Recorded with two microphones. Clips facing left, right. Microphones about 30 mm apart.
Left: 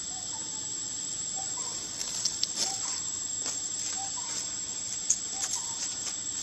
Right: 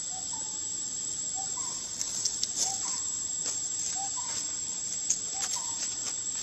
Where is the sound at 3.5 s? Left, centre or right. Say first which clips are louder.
Even; centre.